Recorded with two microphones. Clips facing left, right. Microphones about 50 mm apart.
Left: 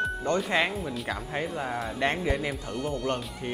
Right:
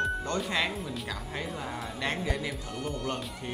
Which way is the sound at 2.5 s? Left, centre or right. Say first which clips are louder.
Left 4 dB; centre.